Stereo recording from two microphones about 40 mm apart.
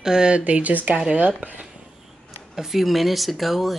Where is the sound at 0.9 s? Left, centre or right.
Right.